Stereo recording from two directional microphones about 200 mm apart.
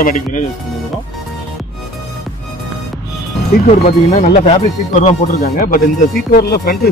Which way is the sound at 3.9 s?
30° left (ahead or behind).